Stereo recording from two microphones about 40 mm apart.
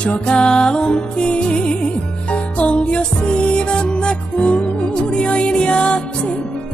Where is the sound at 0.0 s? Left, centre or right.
Left.